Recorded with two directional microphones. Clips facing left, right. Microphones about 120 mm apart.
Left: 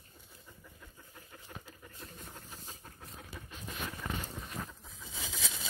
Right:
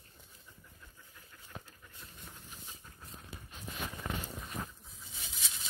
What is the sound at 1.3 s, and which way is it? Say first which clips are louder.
Pant: even; 90° left.